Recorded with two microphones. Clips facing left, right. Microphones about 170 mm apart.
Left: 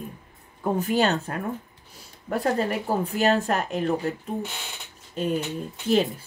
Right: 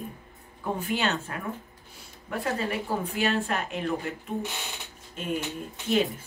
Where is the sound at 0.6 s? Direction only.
40° left (ahead or behind).